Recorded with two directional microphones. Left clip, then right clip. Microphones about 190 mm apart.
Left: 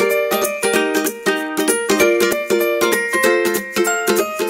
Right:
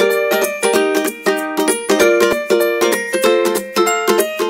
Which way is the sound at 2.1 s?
10° right (ahead or behind).